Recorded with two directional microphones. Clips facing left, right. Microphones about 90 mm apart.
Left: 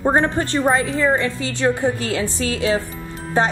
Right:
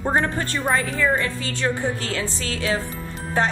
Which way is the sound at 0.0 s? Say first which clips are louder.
Left 4 dB; 25° left (ahead or behind).